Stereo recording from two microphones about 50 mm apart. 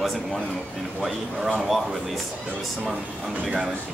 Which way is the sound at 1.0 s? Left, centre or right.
Centre.